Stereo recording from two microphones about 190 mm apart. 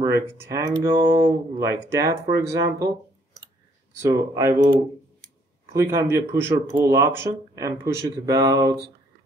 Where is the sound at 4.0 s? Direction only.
15° right (ahead or behind).